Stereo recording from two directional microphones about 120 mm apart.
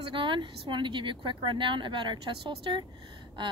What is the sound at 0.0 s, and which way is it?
Speech, 45° right (ahead or behind).